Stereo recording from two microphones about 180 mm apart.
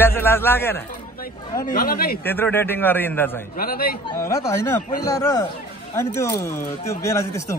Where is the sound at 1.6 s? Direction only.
55° left (ahead or behind).